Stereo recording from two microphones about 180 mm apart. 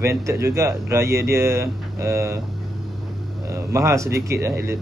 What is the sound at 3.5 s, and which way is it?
Speech, 15° right (ahead or behind).